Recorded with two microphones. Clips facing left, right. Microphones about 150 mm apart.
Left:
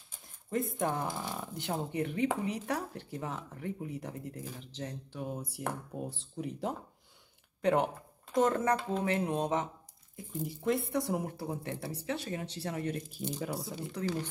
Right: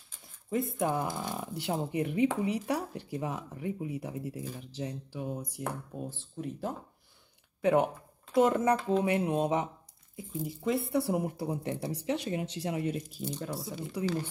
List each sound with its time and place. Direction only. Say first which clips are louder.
0.5 s speech: right 2 dB; 5° right (ahead or behind)
6.3 s speech: even; 15° left (ahead or behind)
7.6 s speech: right 3 dB; 5° right (ahead or behind)
12.9 s speech: right 1 dB; centre (ahead or behind)
14.0 s speech: right 3 dB; 10° right (ahead or behind)